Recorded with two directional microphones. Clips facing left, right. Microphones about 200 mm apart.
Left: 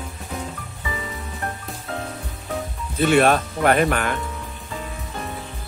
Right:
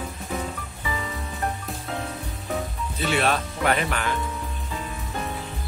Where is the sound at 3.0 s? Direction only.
50° left (ahead or behind).